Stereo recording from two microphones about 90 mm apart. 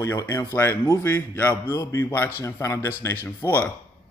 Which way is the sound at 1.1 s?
20° left (ahead or behind).